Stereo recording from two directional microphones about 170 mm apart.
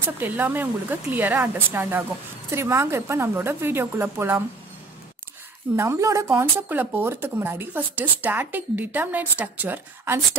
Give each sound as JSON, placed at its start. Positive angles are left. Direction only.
{"t": 0.2, "sound": "speech", "side_deg": -10}
{"t": 5.8, "sound": "speech", "side_deg": -15}